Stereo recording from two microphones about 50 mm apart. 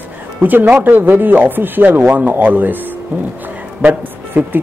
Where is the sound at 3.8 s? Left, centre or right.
Right.